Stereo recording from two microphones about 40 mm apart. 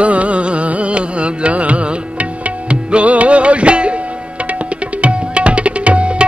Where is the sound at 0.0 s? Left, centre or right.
Right.